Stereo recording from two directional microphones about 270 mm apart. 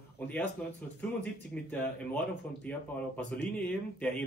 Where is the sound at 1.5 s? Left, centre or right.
Centre.